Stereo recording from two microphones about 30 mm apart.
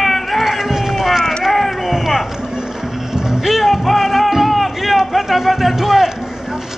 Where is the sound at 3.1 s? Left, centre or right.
Centre.